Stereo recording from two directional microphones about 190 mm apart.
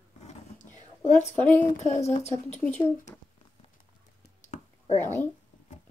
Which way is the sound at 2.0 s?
35° left (ahead or behind).